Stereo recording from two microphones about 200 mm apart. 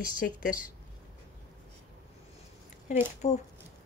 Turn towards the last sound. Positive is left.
turn(degrees=35)  # may be behind; listen again after turning